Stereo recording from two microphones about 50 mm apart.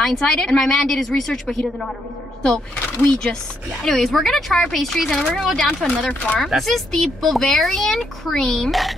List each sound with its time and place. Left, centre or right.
0.0 s a woman's voice: centre
3.8 s a woman's voice: centre
5.9 s speech: left
6.4 s speech: centre